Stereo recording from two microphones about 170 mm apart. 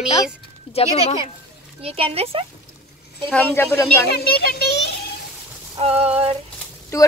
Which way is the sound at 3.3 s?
5° left (ahead or behind).